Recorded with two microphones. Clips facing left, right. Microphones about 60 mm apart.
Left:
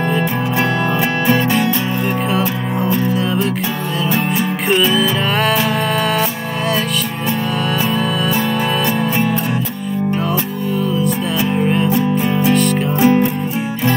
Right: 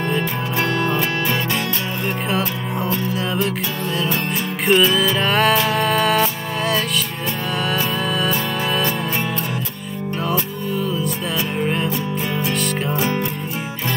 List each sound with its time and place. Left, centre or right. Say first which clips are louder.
1.3 s music: left 7 dB; centre
4.6 s music: even; centre
10.3 s music: left 3 dB; centre
12.9 s music: left 11 dB; centre